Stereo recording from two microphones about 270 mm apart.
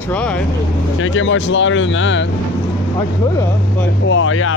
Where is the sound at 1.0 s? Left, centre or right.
Left.